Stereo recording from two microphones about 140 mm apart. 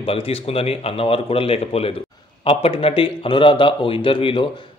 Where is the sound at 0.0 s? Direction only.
45° left (ahead or behind).